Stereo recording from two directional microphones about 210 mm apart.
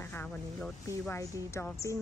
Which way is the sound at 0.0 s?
10° left (ahead or behind).